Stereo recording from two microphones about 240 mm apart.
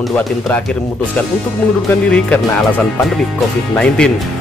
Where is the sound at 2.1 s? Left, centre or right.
Centre.